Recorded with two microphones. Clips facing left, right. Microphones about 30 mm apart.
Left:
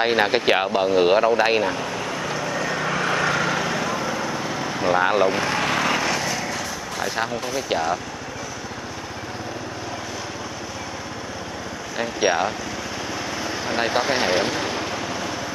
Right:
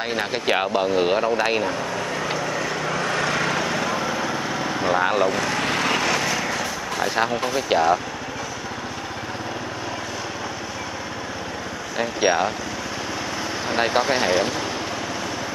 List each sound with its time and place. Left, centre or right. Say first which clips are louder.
0.0 s speech: left 6 dB; left
0.5 s speech: left 1 dB; centre
2.3 s vehicle: even; centre
12.0 s speech: right 1 dB; centre
13.7 s speech: right 1 dB; centre